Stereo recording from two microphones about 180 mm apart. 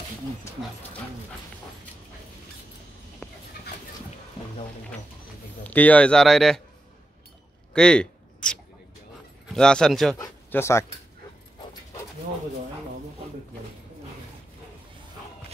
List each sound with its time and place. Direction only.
3.2 s dog: 5° left (ahead or behind)
5.6 s speech: 10° left (ahead or behind)
7.7 s a sound: 5° left (ahead or behind)
9.5 s speech: 5° left (ahead or behind)
10.1 s speech: 15° left (ahead or behind)